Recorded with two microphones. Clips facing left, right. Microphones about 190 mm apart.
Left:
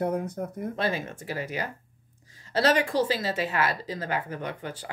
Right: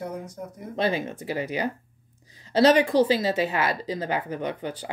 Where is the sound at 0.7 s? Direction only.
20° right (ahead or behind).